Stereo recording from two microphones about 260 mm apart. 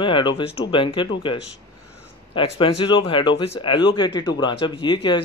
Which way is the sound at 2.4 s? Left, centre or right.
Left.